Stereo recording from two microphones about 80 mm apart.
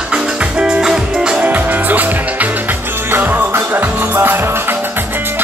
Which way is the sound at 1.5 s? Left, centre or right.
Right.